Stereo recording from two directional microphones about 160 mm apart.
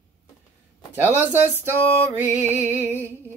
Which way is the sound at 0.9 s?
10° right (ahead or behind).